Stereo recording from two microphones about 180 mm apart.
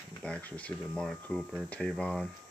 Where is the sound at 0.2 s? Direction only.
10° left (ahead or behind).